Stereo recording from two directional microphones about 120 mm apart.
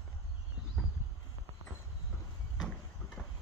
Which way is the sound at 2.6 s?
5° left (ahead or behind).